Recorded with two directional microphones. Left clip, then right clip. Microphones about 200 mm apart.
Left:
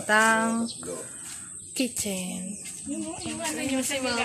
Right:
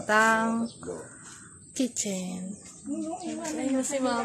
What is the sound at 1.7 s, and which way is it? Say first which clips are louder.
Speech: left 1 dB; 5° right (ahead or behind).